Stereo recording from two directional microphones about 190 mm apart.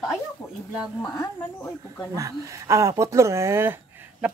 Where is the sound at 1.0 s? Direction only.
20° left (ahead or behind).